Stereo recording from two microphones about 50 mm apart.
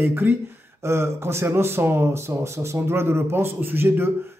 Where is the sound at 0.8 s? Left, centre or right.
Right.